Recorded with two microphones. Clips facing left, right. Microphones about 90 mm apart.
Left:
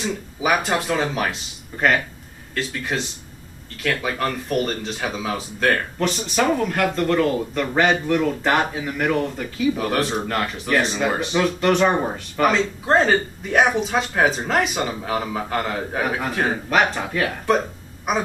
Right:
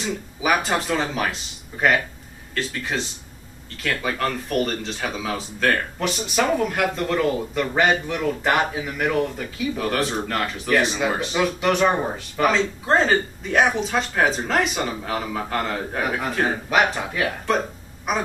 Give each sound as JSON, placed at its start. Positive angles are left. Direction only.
{"t": 0.0, "sound": "speech", "side_deg": 0}